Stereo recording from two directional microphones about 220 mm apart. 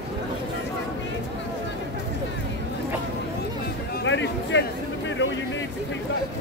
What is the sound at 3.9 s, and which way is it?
Music, 55° left (ahead or behind).